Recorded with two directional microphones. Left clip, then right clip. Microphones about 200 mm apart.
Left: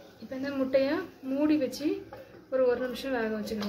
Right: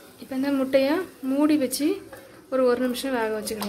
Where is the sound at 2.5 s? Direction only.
40° right (ahead or behind).